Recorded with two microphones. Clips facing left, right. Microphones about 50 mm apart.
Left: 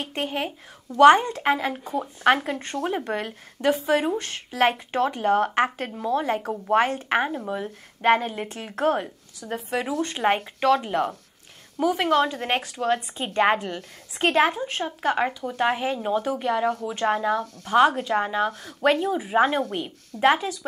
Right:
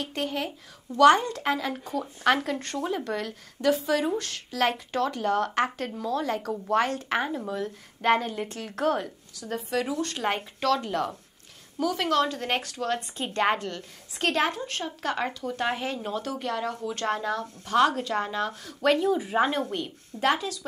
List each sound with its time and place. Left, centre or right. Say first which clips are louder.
0.0 s a woman's voice: left 2 dB; left